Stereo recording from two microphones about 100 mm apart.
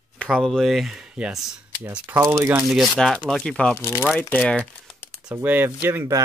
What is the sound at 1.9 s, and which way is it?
Speech, 20° right (ahead or behind).